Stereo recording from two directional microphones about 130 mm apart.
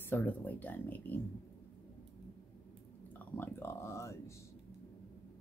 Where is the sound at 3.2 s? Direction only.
15° left (ahead or behind).